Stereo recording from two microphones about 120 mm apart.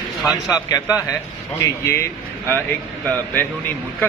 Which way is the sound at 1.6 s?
20° left (ahead or behind).